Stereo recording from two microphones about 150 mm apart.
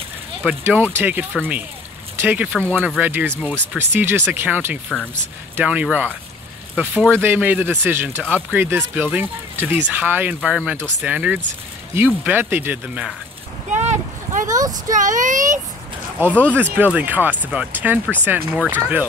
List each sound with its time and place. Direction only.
0.5 s speech: 15° right (ahead or behind)
13.8 s boat: 60° right (ahead or behind)
14.9 s speech: 60° right (ahead or behind)
16.3 s speech: 10° right (ahead or behind)